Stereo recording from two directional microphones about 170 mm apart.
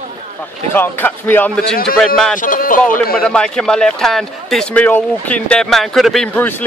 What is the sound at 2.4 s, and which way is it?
Speech, 55° left (ahead or behind).